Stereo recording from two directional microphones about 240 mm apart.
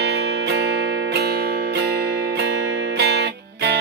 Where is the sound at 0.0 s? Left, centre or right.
Right.